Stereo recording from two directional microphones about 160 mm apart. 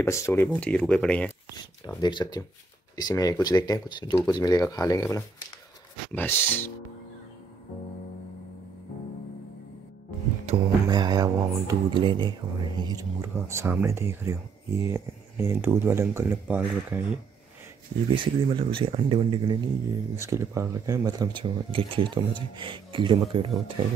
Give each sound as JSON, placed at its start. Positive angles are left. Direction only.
{"t": 0.0, "sound": "speech", "side_deg": 15}
{"t": 1.9, "sound": "speech", "side_deg": 25}
{"t": 10.5, "sound": "speech", "side_deg": -35}
{"t": 10.9, "sound": "music", "side_deg": -25}
{"t": 11.6, "sound": "speech", "side_deg": -30}
{"t": 18.1, "sound": "speech", "side_deg": -30}